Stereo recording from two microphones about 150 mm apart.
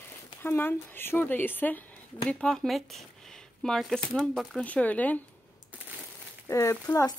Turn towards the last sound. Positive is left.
turn(degrees=15)  # may be behind; listen again after turning